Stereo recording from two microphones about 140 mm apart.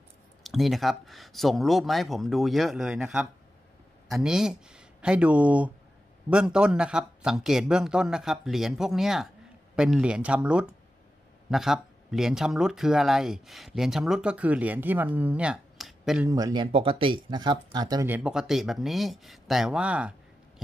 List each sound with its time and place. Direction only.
0.4 s speech: centre (ahead or behind)
16.3 s speech: 25° right (ahead or behind)
16.7 s speech: 40° right (ahead or behind)
18.0 s speech: 15° right (ahead or behind)
18.3 s speech: 5° right (ahead or behind)